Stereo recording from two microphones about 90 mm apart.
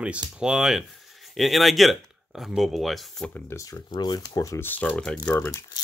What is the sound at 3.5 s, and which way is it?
Speech, 35° left (ahead or behind).